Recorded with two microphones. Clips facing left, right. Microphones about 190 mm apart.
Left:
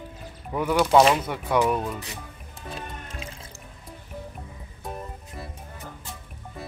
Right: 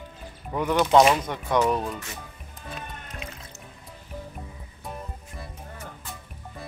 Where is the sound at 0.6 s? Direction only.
10° left (ahead or behind).